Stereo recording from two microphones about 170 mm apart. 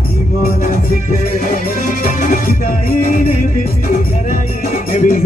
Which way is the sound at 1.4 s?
50° left (ahead or behind).